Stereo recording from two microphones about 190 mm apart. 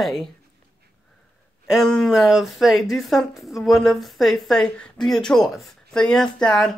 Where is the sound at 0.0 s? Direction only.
Centre (ahead or behind).